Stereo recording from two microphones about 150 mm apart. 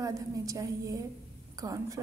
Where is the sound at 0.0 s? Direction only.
20° right (ahead or behind).